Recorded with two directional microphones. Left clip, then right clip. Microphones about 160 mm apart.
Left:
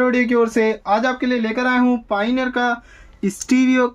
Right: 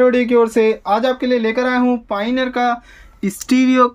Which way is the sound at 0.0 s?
20° right (ahead or behind).